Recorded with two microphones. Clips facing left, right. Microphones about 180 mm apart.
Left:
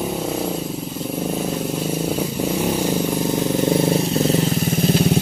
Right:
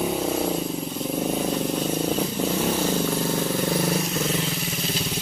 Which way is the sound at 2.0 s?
10° left (ahead or behind).